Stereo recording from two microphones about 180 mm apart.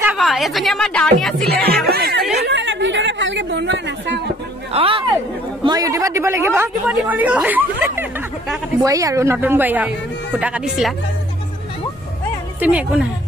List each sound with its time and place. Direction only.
0.0 s a woman's voice: 5° right (ahead or behind)
1.5 s music: 60° right (ahead or behind)
2.3 s chatter: 90° right
4.7 s a man's voice: 30° right (ahead or behind)
5.6 s a sound: 20° right (ahead or behind)
6.9 s speech: 10° right (ahead or behind)
12.5 s speech: 5° right (ahead or behind)